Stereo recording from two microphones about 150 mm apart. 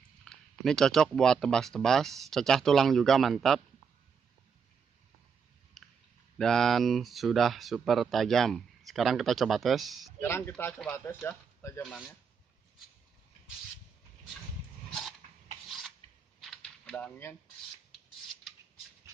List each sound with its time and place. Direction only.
0.2 s speech: 5° left (ahead or behind)
5.8 s a sound: centre (ahead or behind)
6.3 s speech: 5° left (ahead or behind)
10.2 s a man's voice: 15° left (ahead or behind)
11.8 s speech: centre (ahead or behind)
16.3 s a sound: 5° left (ahead or behind)